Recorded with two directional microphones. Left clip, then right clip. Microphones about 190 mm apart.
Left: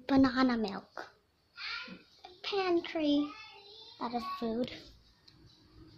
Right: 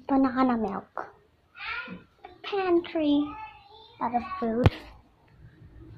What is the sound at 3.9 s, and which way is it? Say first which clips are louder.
Child singing: right 9 dB; 20° left (ahead or behind).